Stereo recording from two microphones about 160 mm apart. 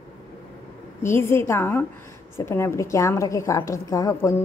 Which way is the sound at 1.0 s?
15° left (ahead or behind).